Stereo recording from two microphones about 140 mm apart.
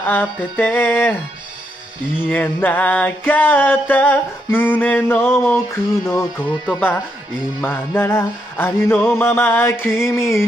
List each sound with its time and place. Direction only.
0.0 s music: 15° left (ahead or behind)
2.1 s music: 10° left (ahead or behind)